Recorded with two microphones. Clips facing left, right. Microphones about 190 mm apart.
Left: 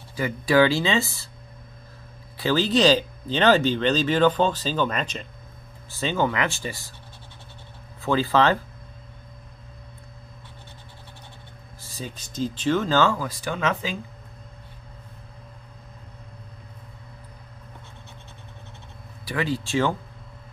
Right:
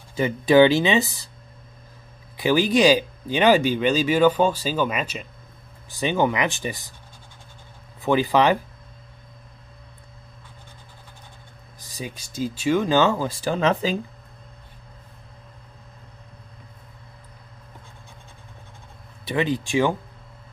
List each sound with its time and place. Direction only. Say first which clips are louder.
0.1 s speech: right 4 dB; 20° right (ahead or behind)
2.3 s speech: right 2 dB; 15° right (ahead or behind)
8.0 s speech: right 2 dB; 15° right (ahead or behind)
11.8 s speech: right 2 dB; 15° right (ahead or behind); by 13.9 s 35° right (ahead or behind)
19.2 s speech: right 3 dB; 20° right (ahead or behind)